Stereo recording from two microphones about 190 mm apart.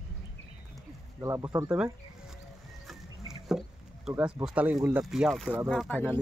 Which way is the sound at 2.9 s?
5° right (ahead or behind).